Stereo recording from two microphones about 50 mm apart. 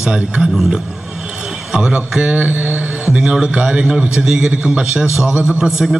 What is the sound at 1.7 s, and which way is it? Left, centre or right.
A man's voice, centre.